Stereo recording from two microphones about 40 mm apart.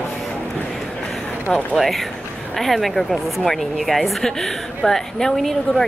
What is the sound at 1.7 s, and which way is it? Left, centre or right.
A woman's voice, centre.